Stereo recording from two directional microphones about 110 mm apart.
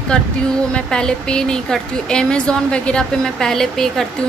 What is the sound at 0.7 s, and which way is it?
Speech, 10° left (ahead or behind).